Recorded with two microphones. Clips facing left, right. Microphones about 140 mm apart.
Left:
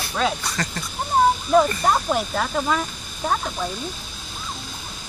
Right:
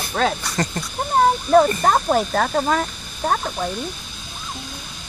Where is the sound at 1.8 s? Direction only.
45° right (ahead or behind).